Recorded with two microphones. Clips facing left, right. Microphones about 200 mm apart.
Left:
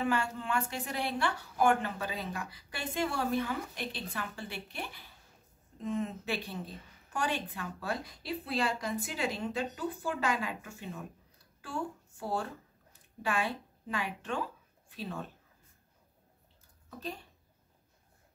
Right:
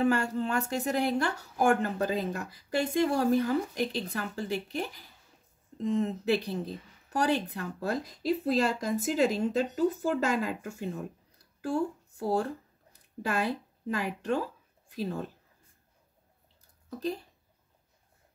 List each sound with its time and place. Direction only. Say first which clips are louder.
0.0 s speech: right 6 dB; 40° right (ahead or behind)